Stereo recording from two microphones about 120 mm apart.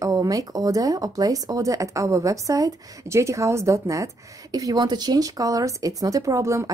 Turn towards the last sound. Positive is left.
turn(degrees=-25)  # may be behind; listen again after turning